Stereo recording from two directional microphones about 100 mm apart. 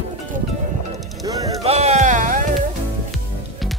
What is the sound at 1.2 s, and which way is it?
Music, 35° right (ahead or behind).